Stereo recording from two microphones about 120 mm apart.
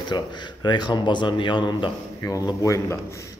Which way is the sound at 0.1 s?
40° left (ahead or behind).